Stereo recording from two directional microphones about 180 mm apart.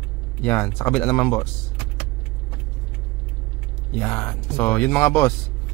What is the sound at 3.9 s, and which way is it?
Speech, 10° left (ahead or behind).